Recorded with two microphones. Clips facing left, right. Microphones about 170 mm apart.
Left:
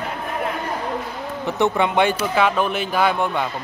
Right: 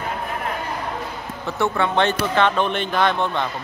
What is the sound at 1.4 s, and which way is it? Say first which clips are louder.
Speech: left 2 dB; 20° left (ahead or behind).